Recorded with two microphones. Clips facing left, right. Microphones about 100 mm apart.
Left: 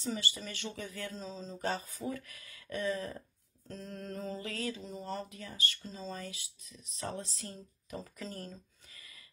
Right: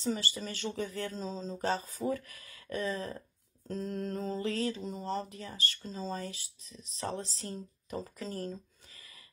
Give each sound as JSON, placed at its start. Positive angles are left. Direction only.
{"t": 0.0, "sound": "speech", "side_deg": -35}